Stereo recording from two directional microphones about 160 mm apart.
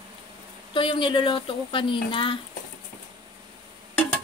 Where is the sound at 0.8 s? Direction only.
30° left (ahead or behind).